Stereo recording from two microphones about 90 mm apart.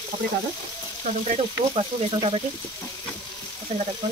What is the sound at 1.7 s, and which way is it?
Speech, 85° right.